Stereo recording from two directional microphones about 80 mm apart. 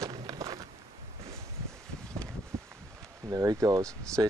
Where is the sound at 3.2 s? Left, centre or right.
Right.